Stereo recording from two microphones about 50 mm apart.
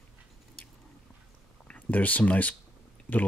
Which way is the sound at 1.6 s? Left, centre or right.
Left.